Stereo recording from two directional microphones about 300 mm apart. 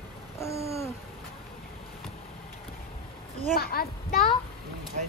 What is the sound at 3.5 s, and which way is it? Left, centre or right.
Speech, left.